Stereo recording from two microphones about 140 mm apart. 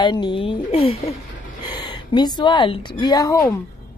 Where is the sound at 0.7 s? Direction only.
50° left (ahead or behind).